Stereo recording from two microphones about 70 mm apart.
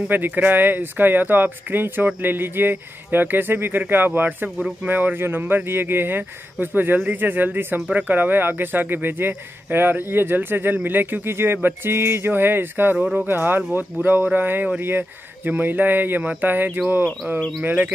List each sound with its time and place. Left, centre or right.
0.1 s speech: right
12.9 s speech: centre
13.3 s speech: right